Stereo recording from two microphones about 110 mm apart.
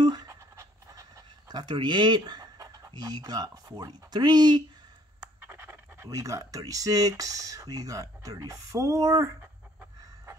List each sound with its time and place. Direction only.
0.0 s scratch: 40° right (ahead or behind)
1.5 s speech: 40° right (ahead or behind)
5.2 s scratch: 20° right (ahead or behind)
6.0 s speech: 30° right (ahead or behind)